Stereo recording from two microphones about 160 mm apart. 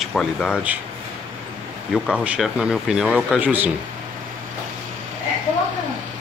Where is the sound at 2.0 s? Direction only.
5° right (ahead or behind).